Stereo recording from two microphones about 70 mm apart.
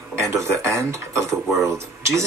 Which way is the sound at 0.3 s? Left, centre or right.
Right.